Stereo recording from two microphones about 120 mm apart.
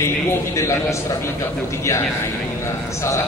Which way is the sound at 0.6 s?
25° left (ahead or behind).